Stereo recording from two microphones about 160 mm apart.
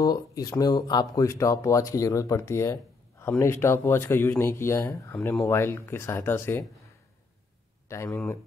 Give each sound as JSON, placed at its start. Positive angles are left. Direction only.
{"t": 0.0, "sound": "speech", "side_deg": 25}
{"t": 7.9, "sound": "speech", "side_deg": 15}